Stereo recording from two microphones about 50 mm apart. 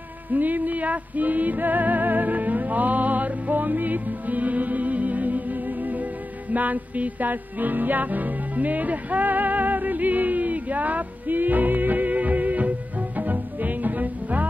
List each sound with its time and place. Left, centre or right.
0.3 s music: right